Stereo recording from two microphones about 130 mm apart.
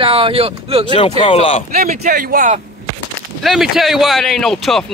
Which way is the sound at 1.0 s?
40° left (ahead or behind).